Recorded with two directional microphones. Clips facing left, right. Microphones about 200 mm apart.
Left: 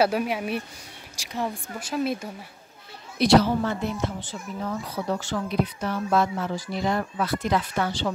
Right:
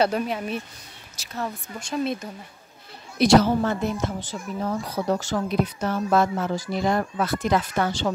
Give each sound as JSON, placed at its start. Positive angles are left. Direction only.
{"t": 0.0, "sound": "speech", "side_deg": 10}
{"t": 3.2, "sound": "a woman's voice", "side_deg": -45}